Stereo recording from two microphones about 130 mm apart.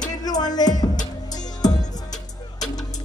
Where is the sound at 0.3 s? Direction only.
30° left (ahead or behind).